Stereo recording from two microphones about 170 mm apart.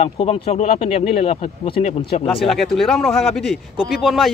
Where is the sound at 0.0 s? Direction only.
35° left (ahead or behind).